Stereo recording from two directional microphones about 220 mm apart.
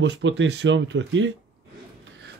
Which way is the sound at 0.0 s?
55° right (ahead or behind).